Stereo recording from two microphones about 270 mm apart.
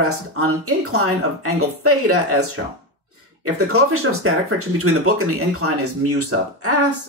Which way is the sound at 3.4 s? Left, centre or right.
Right.